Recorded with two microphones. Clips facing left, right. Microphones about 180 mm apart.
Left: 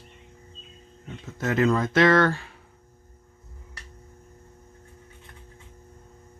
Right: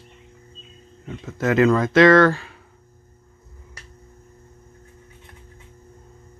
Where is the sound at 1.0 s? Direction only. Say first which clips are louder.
Right 6 dB; 90° right.